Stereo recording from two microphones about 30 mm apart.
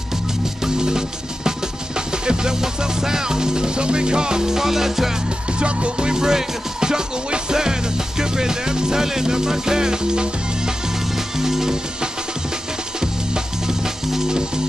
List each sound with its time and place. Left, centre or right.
0.7 s music: right
5.5 s music: right
8.2 s speech: right
11.1 s music: centre
13.0 s music: right